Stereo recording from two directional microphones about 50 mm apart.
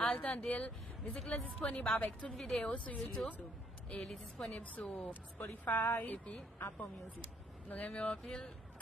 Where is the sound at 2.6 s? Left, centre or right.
Left.